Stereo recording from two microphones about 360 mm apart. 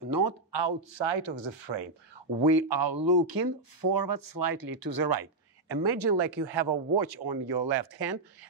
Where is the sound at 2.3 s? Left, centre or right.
Right.